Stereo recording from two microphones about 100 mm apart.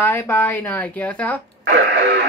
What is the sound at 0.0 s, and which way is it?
Speech, 20° left (ahead or behind).